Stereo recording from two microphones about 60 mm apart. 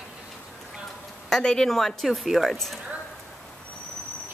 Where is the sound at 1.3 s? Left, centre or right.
Centre.